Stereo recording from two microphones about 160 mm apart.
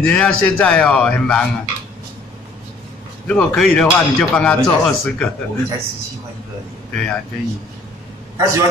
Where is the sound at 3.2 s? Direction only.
10° left (ahead or behind).